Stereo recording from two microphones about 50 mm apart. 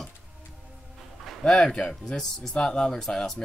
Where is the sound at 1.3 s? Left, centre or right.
Centre.